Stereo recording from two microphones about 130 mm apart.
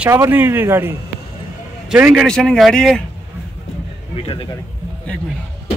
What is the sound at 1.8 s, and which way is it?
Speech, 5° right (ahead or behind).